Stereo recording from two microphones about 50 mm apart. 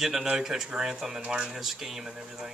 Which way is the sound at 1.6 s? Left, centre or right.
Centre.